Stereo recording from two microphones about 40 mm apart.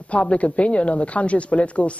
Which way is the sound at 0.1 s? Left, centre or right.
Left.